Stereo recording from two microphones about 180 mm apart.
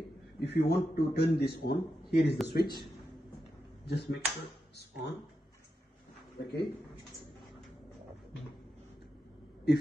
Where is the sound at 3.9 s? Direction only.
70° left (ahead or behind).